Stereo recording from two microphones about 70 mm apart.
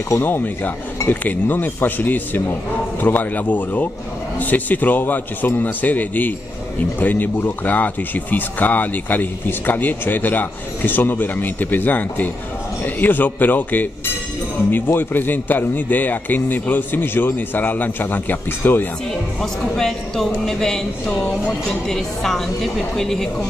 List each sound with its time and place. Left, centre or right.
0.1 s speech: left
19.4 s speech: centre